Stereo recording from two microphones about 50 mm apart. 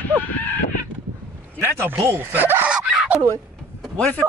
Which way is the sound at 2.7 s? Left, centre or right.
Right.